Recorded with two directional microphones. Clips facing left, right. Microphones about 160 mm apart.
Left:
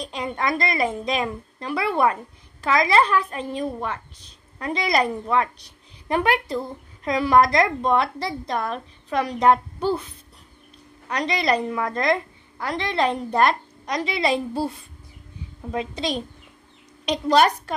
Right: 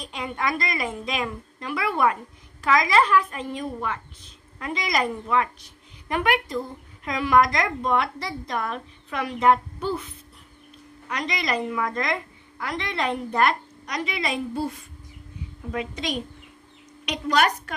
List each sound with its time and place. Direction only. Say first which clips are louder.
0.0 s a woman's voice: left 2 dB; 35° left (ahead or behind)
11.1 s a woman's voice: left 5 dB; 30° left (ahead or behind)